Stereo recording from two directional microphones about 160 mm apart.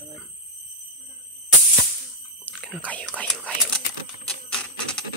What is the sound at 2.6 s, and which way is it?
Whispering, 10° left (ahead or behind).